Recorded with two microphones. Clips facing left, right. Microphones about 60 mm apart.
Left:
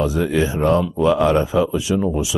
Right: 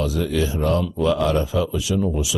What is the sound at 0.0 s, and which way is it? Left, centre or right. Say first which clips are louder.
Speech: left 4 dB; left.